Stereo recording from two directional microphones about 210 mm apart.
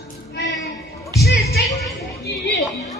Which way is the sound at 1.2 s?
50° left (ahead or behind).